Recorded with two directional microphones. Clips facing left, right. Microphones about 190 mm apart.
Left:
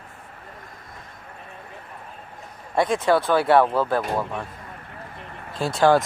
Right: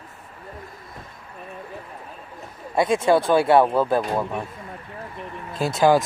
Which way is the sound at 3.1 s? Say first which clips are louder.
Right 1 dB; 20° right (ahead or behind).